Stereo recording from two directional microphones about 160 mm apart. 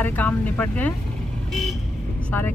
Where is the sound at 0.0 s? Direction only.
10° left (ahead or behind).